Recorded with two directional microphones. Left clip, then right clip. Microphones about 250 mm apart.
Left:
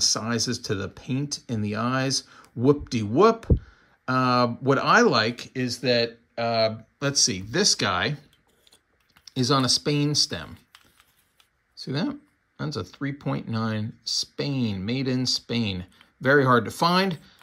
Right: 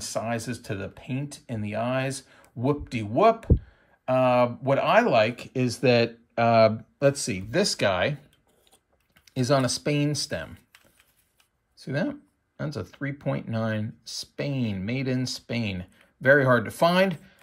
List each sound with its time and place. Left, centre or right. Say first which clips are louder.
0.3 s speech: left 4 dB; centre
5.1 s speech: right 2 dB; centre
5.7 s speech: right 2 dB; centre
7.0 s speech: even; centre
9.2 s speech: even; centre
11.7 s speech: even; centre